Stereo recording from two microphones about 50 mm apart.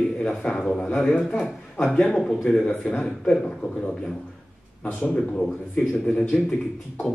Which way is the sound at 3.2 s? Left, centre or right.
Centre.